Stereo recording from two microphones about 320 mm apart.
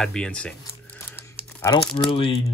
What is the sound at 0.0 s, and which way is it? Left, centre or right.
Speech, centre.